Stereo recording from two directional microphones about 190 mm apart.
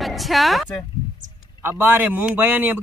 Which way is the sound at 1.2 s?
40° right (ahead or behind).